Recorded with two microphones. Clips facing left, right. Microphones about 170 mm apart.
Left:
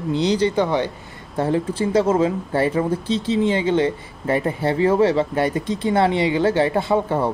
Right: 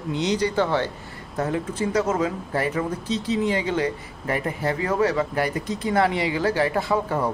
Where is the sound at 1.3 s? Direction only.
30° left (ahead or behind).